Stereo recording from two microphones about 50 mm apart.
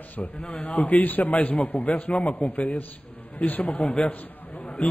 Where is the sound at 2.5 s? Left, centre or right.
Left.